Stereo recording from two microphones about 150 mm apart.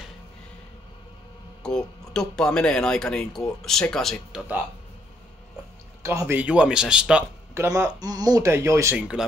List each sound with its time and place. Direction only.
1.6 s speech: 5° left (ahead or behind)
6.0 s speech: 15° right (ahead or behind)
7.5 s speech: 25° right (ahead or behind)
8.9 s speech: 5° right (ahead or behind)